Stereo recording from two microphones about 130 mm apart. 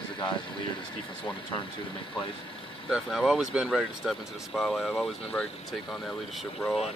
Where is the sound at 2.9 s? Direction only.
Centre (ahead or behind).